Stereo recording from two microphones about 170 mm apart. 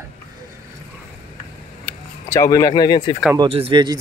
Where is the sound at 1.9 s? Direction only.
15° left (ahead or behind).